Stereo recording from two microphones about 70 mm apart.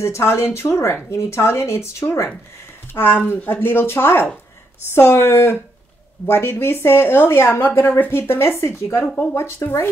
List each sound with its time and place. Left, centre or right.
0.0 s speech: left
9.0 s speech: centre
9.3 s speech: left